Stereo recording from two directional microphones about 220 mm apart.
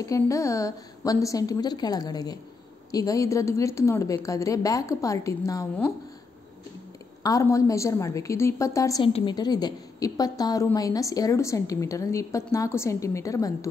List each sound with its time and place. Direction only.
0.0 s a woman's voice: 15° left (ahead or behind)
7.2 s a woman's voice: 15° left (ahead or behind)